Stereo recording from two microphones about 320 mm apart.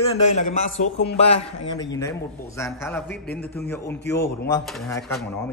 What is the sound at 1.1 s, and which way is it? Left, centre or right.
A man's voice, centre.